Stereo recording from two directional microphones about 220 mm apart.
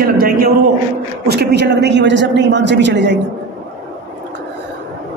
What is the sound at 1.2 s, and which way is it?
A woman's voice, 45° right (ahead or behind).